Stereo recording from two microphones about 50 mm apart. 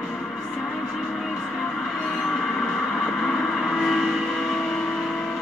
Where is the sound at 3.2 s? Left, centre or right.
Centre.